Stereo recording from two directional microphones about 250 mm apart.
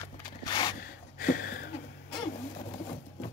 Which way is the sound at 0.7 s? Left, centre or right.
Left.